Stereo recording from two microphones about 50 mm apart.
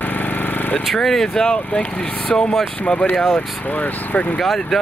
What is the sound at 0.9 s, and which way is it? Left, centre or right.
Speech, centre.